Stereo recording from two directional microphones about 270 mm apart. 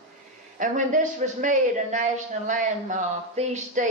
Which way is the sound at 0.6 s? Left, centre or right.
Right.